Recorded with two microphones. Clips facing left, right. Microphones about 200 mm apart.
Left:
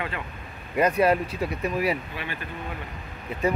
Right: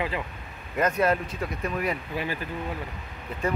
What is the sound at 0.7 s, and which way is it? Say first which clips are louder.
Speech: left 3 dB; 10° left (ahead or behind).